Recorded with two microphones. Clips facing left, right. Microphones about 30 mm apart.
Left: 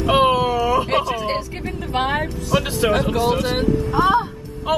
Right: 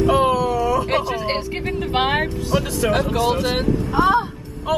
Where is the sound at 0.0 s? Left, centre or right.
Left.